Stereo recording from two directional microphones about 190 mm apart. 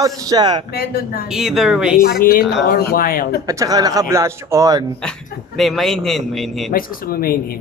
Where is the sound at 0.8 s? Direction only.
55° left (ahead or behind).